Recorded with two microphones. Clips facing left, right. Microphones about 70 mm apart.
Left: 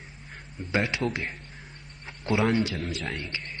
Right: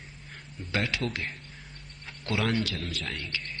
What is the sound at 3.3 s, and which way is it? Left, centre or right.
Speech, centre.